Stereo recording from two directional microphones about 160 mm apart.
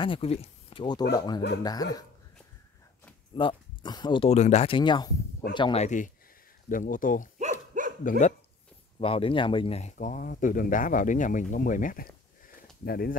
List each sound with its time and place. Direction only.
0.0 s speech: 35° left (ahead or behind)
3.3 s speech: 30° left (ahead or behind)
4.3 s speech: 45° left (ahead or behind)
4.7 s speech: 30° left (ahead or behind)
5.8 s speech: 50° left (ahead or behind)
9.0 s speech: 35° left (ahead or behind)
9.9 s speech: 55° left (ahead or behind)